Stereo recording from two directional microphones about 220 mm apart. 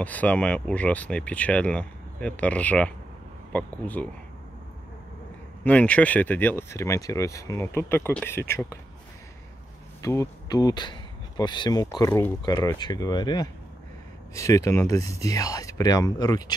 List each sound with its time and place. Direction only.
0.0 s speech: 5° left (ahead or behind)
5.6 s speech: 5° left (ahead or behind)
10.0 s speech: 15° left (ahead or behind)